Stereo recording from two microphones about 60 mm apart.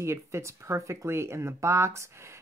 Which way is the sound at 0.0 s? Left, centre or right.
Right.